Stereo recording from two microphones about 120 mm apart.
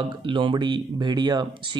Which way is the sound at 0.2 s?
45° right (ahead or behind).